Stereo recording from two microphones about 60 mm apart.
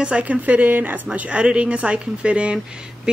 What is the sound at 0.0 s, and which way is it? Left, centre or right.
A woman's voice, right.